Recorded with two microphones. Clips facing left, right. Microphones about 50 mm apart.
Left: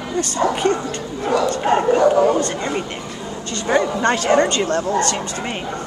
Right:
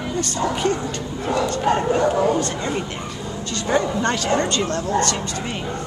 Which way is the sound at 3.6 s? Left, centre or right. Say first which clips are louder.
Left 3 dB; left.